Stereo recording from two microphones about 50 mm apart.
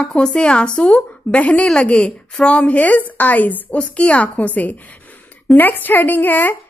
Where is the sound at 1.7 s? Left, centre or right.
Centre; by 3.6 s left.